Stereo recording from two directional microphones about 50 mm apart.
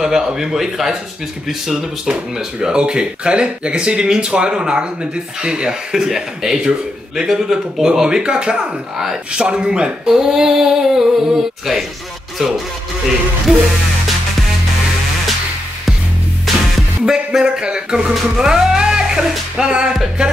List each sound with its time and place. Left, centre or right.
0.0 s speech: centre
17.0 s speech: centre
18.8 s music: centre
19.9 s speech: centre